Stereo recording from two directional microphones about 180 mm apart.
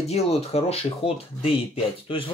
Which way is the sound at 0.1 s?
35° left (ahead or behind).